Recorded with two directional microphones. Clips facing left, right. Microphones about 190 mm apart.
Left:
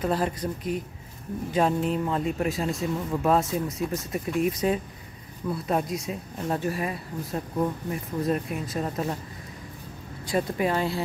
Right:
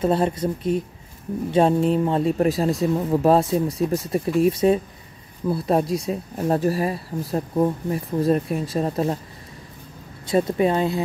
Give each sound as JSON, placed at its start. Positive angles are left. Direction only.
{"t": 0.0, "sound": "a woman's voice", "side_deg": -25}
{"t": 10.2, "sound": "a woman's voice", "side_deg": -25}